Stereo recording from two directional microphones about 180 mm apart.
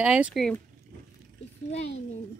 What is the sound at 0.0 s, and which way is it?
Speech, 5° right (ahead or behind).